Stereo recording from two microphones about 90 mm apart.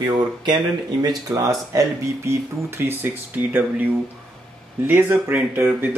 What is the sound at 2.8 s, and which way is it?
Speech, 25° right (ahead or behind).